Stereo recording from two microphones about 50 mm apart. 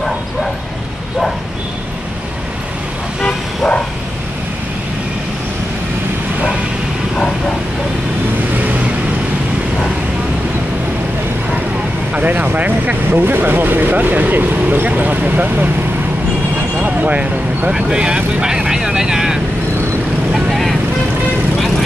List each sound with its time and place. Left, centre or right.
3.2 s vehicle: centre
8.5 s vehicle: right
12.1 s vehicle: right
12.4 s speech: right
16.7 s speech: right; by 19.4 s centre
20.3 s vehicle: centre